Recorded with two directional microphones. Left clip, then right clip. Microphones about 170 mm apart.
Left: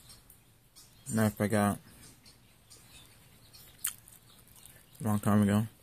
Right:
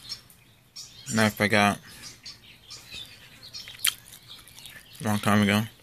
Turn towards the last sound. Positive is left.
turn(degrees=30)  # may be behind; listen again after turning